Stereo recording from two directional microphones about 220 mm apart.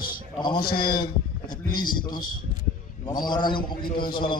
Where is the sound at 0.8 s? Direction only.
40° left (ahead or behind).